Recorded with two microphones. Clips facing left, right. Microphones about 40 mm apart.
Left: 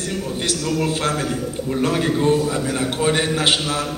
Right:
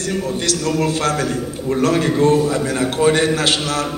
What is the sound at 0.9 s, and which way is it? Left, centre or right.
A man's voice, centre.